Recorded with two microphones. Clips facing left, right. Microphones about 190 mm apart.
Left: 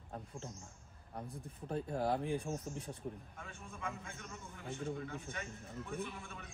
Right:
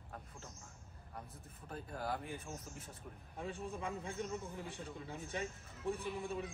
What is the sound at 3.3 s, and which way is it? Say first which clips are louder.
Speech: right 7 dB; 35° right (ahead or behind).